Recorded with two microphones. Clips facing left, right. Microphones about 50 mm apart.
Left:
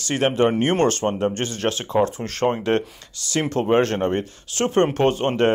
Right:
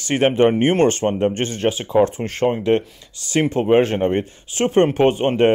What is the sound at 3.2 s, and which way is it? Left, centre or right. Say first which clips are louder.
Speech: right 4 dB; right.